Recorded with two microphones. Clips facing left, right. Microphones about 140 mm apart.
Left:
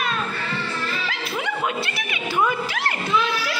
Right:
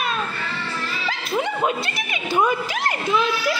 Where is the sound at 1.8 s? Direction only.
20° right (ahead or behind).